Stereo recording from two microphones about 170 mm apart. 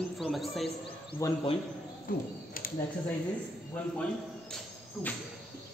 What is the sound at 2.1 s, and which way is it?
Speech, 55° left (ahead or behind).